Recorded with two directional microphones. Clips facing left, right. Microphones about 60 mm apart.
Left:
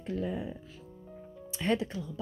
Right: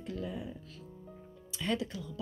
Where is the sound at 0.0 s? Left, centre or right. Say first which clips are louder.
Left 5 dB; left.